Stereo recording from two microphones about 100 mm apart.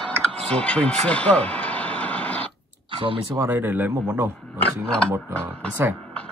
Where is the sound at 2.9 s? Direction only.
60° right (ahead or behind).